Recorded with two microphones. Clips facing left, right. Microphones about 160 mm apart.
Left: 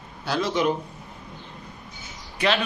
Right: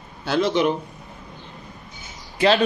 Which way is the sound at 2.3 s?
35° right (ahead or behind).